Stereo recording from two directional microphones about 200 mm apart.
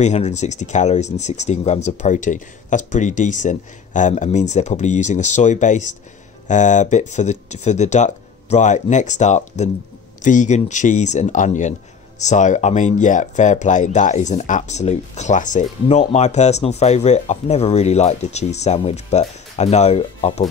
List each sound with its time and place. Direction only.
0.0 s speech: 35° left (ahead or behind)